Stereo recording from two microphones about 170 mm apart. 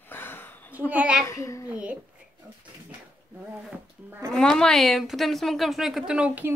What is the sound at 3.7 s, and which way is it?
Speech, 15° right (ahead or behind).